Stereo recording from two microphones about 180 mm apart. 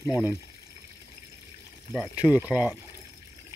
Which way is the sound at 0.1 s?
10° right (ahead or behind).